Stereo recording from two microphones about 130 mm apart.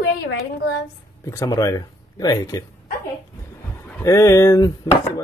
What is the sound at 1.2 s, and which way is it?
Speech, 25° left (ahead or behind).